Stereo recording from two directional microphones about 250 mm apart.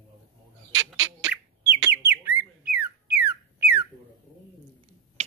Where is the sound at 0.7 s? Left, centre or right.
Right.